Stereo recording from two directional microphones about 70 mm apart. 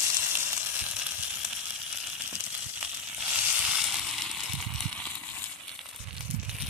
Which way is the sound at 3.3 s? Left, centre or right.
Centre.